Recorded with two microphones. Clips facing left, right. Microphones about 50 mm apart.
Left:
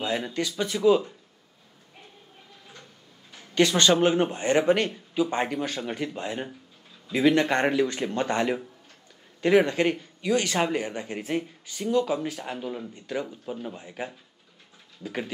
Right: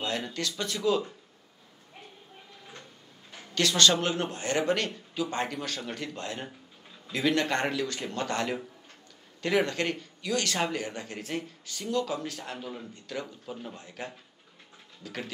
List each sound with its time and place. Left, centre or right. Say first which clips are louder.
0.0 s speech: left 4 dB; centre
3.5 s speech: left 4 dB; left